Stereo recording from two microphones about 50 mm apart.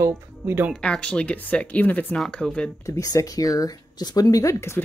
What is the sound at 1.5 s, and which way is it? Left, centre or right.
Speech, left.